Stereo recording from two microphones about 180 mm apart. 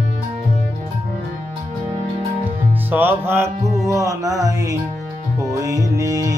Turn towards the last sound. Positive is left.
turn(degrees=-20)  # may be behind; listen again after turning